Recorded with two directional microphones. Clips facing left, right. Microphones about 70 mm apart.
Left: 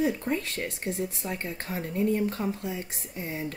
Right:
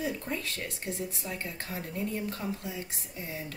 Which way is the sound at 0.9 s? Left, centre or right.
Left.